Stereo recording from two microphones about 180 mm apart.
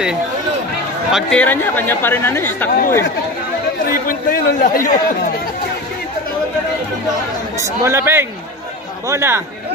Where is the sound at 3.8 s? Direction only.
50° left (ahead or behind).